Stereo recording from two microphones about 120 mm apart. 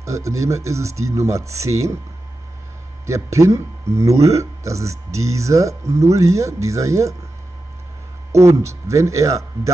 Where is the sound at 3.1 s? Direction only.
25° right (ahead or behind).